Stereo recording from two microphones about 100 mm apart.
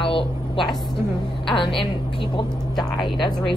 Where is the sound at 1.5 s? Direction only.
55° left (ahead or behind).